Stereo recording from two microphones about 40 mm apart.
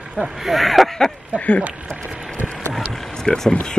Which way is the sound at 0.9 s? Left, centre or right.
Centre.